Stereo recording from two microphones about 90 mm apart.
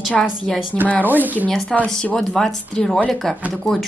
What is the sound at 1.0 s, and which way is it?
Speech, 20° right (ahead or behind).